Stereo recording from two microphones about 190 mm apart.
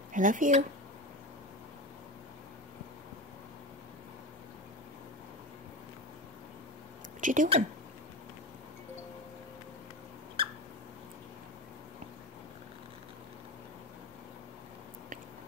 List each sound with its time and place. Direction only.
0.1 s speech: 45° right (ahead or behind)
7.2 s speech: 45° right (ahead or behind)
10.4 s a sound: 30° right (ahead or behind)